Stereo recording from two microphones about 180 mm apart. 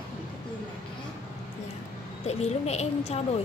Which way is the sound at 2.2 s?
35° left (ahead or behind).